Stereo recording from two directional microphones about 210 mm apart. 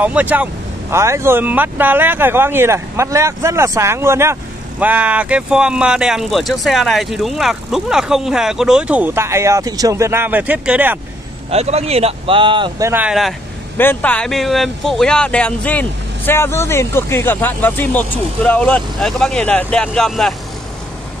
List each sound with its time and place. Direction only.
0.0 s speech: 5° right (ahead or behind)
11.5 s speech: 30° right (ahead or behind); by 13.3 s 5° right (ahead or behind)
13.7 s speech: 10° left (ahead or behind)